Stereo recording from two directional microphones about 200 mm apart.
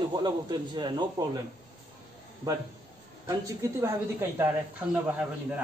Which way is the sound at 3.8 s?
15° right (ahead or behind).